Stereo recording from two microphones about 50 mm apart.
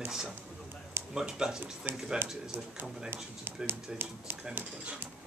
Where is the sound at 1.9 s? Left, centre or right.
Right.